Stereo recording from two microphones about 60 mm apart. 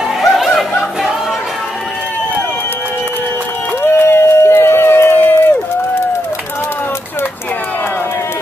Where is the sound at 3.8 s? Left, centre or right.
Left.